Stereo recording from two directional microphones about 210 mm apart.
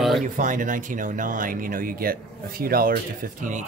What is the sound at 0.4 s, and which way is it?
Speech, 40° right (ahead or behind).